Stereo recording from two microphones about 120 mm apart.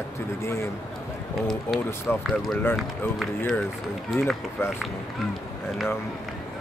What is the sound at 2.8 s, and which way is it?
Speech, centre (ahead or behind).